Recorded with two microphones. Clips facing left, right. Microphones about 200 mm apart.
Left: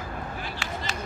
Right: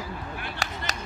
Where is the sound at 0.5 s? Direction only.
40° right (ahead or behind).